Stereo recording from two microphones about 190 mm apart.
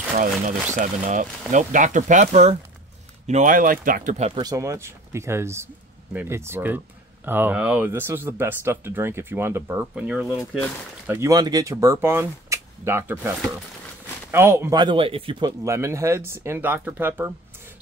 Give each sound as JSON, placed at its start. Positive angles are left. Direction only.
{"t": 0.7, "sound": "speech", "side_deg": -40}
{"t": 4.4, "sound": "speech", "side_deg": -20}
{"t": 11.1, "sound": "speech", "side_deg": -15}
{"t": 14.3, "sound": "speech", "side_deg": -15}